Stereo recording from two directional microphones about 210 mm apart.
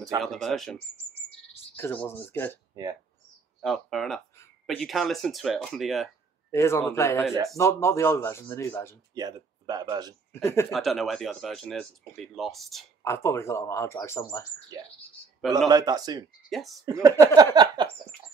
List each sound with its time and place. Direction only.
0.2 s speech: centre (ahead or behind)
2.7 s speech: 15° right (ahead or behind)
3.6 s speech: centre (ahead or behind)
6.5 s speech: 10° left (ahead or behind)
9.1 s speech: 20° right (ahead or behind)
10.3 s speech: 10° left (ahead or behind)
10.7 s speech: centre (ahead or behind)
13.0 s speech: 15° left (ahead or behind)
15.7 s a man's voice: 20° right (ahead or behind)
16.4 s speech: centre (ahead or behind)
16.8 s a man's voice: 15° right (ahead or behind)